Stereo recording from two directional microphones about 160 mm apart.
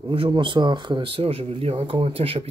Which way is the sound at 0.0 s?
35° right (ahead or behind).